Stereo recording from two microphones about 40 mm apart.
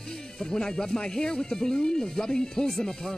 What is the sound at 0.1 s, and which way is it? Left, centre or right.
Speech, centre.